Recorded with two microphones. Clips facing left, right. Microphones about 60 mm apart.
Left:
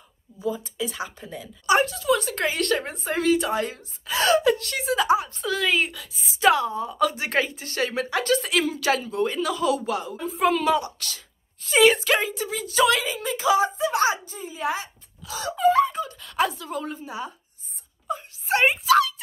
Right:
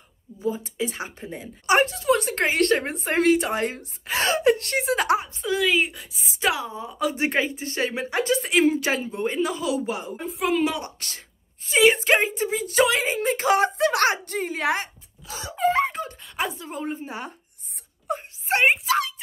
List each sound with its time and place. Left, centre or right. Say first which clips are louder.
0.5 s speech: right 1 dB; right
5.2 s a woman's voice: right 2 dB; centre
10.3 s a woman's voice: left 3 dB; centre
10.8 s speech: left 2 dB; right
13.7 s a child's voice: right 1 dB; right
14.1 s a child's voice: right 7 dB; right
15.5 s speech: left 3 dB; right
16.2 s a woman's voice: left 4 dB; right
18.0 s wail: right 1 dB; right
18.7 s a woman's voice: left 3 dB; right